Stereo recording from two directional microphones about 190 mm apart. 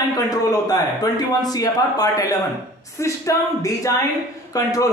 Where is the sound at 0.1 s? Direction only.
20° left (ahead or behind).